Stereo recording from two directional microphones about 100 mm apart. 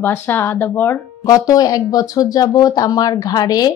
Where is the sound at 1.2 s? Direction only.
35° left (ahead or behind).